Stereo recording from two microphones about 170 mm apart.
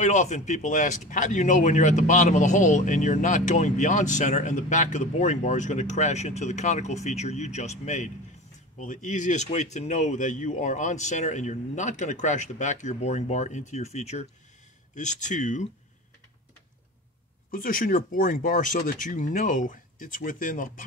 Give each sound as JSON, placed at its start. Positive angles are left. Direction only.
{"t": 0.0, "sound": "speech", "side_deg": 45}
{"t": 17.5, "sound": "speech", "side_deg": 55}